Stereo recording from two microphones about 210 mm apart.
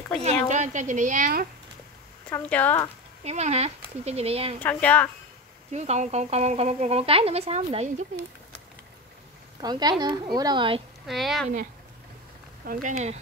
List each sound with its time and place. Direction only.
0.5 s speech: 35° right (ahead or behind)
2.2 s speech: 5° left (ahead or behind)
3.3 s speech: 30° right (ahead or behind)
4.6 s speech: 5° left (ahead or behind)
5.7 s speech: 30° right (ahead or behind)
9.6 s a woman's voice: 20° right (ahead or behind)
11.1 s speech: centre (ahead or behind)
12.6 s speech: 40° right (ahead or behind)